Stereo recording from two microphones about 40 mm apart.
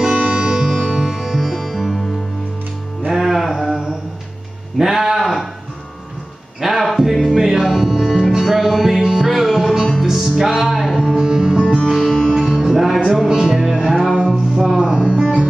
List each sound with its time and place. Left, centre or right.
0.2 s music: right
1.1 s music: centre
3.1 s music: centre
4.7 s a sound: centre
6.6 s music: centre
7.3 s music: centre
11.9 s music: centre
12.4 s music: centre
13.3 s music: centre
13.7 s music: centre
14.9 s music: right